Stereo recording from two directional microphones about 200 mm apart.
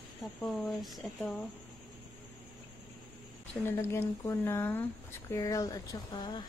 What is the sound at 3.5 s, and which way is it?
Speech, 10° left (ahead or behind).